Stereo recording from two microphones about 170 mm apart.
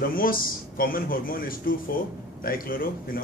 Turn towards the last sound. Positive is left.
turn(degrees=60)  # may be behind; listen again after turning